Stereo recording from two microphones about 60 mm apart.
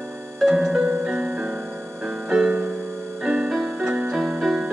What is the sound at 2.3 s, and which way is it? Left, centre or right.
Music, centre.